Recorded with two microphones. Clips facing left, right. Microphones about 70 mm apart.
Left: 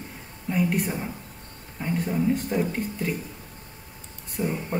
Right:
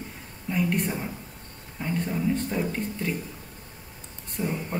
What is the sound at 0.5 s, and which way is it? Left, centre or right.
Speech, centre.